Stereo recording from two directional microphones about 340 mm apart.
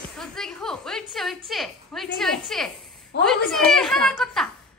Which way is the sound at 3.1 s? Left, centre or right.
Left.